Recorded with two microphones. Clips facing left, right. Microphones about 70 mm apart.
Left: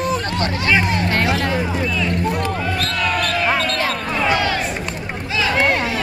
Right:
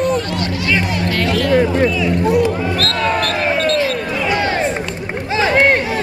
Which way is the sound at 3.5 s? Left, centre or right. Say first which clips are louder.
Right 3 dB; left.